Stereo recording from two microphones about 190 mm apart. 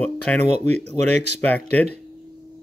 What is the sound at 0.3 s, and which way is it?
Speech, 5° left (ahead or behind).